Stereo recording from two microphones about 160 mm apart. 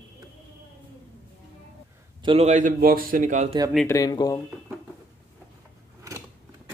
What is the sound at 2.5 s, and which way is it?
A man's voice, 55° right (ahead or behind).